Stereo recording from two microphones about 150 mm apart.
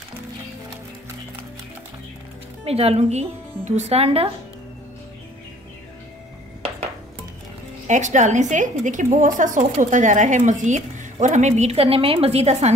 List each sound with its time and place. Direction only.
2.6 s a woman's voice: 40° right (ahead or behind)
7.8 s a woman's voice: 55° right (ahead or behind)